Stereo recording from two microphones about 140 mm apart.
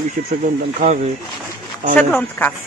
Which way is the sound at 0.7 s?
60° right (ahead or behind).